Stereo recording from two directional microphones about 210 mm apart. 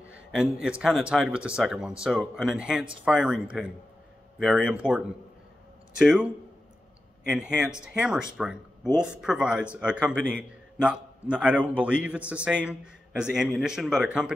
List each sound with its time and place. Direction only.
0.1 s a man's voice: 5° right (ahead or behind)
7.3 s a man's voice: 5° right (ahead or behind)